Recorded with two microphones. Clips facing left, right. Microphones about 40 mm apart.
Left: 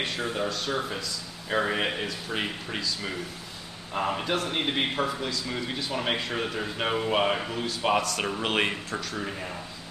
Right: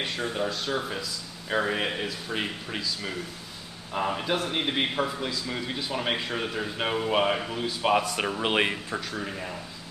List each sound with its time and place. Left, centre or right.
0.0 s speech: centre
8.0 s speech: centre
8.3 s speech: centre